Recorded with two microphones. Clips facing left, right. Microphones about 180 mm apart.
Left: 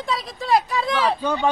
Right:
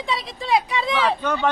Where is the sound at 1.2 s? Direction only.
10° left (ahead or behind).